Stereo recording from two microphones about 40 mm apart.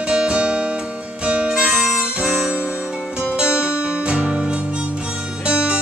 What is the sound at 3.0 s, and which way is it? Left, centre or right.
Music, centre.